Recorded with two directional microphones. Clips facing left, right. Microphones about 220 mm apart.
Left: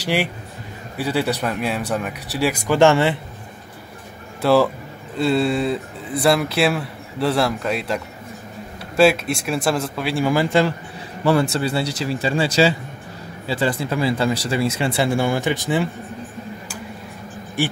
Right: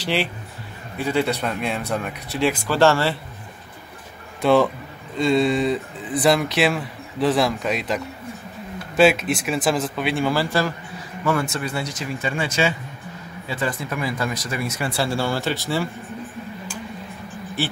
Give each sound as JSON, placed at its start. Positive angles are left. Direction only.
{"t": 0.0, "sound": "speech", "side_deg": 10}
{"t": 2.6, "sound": "speech", "side_deg": 20}
{"t": 4.4, "sound": "a man's voice", "side_deg": 5}
{"t": 10.2, "sound": "speech", "side_deg": 15}
{"t": 11.2, "sound": "speech", "side_deg": 30}